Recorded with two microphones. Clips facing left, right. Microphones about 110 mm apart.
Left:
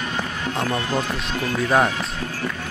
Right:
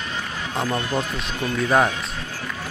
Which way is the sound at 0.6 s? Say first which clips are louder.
Even; centre (ahead or behind).